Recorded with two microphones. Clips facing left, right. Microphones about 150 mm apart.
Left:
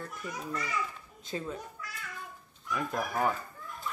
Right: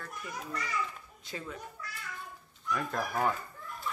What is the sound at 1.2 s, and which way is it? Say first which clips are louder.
Speech: left 5 dB; 25° left (ahead or behind).